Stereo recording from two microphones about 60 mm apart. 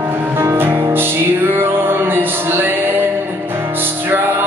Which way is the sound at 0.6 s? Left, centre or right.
Right.